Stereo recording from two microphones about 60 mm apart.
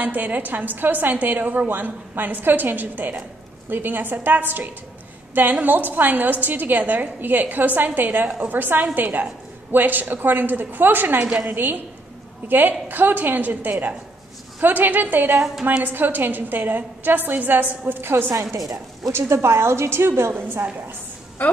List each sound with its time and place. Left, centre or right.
0.0 s a woman's voice: right
18.6 s a woman's voice: right
19.1 s a woman's voice: right
21.4 s a woman's voice: left